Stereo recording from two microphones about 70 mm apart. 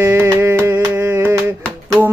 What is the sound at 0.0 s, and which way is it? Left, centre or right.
Music, right.